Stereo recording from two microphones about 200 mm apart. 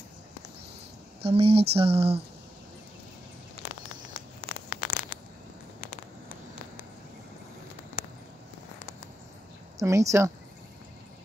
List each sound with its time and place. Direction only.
1.2 s speech: 30° right (ahead or behind)
4.6 s a sound: 35° left (ahead or behind)
9.8 s a woman's voice: 15° right (ahead or behind)